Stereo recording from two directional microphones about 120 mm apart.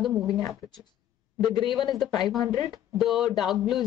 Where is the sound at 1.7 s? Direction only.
Centre (ahead or behind).